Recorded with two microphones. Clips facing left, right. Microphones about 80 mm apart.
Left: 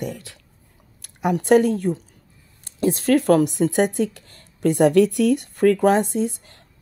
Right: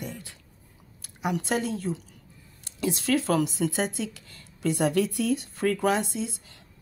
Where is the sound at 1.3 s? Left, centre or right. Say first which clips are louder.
Left 15 dB; left.